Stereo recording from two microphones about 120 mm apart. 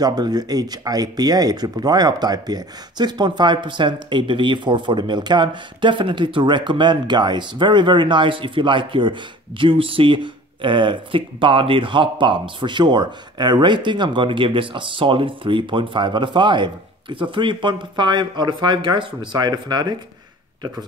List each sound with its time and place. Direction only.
0.0 s speech: 35° right (ahead or behind)